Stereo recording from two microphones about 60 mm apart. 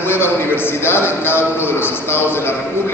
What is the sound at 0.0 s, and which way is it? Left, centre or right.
A man's voice, left.